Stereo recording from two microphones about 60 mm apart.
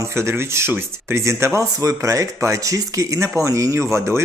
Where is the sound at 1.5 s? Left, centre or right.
Right.